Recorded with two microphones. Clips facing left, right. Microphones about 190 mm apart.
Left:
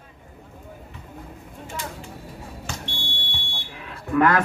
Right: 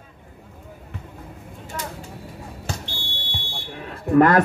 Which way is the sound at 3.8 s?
40° right (ahead or behind).